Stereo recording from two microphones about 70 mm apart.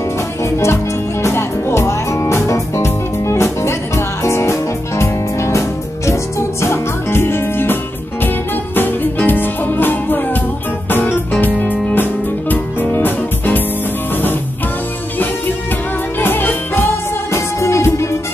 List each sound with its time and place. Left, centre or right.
0.4 s music: left
16.2 s music: left
17.3 s music: left